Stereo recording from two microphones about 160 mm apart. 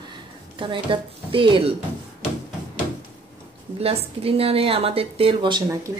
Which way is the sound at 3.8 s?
35° right (ahead or behind).